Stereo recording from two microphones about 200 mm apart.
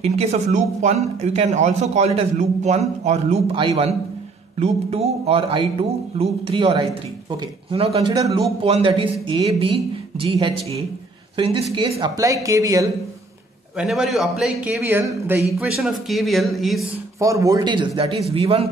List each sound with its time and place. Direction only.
0.0 s speech: 30° right (ahead or behind)
8.1 s a man's voice: 20° right (ahead or behind)
13.7 s a man's voice: centre (ahead or behind)
17.2 s a man's voice: 15° right (ahead or behind)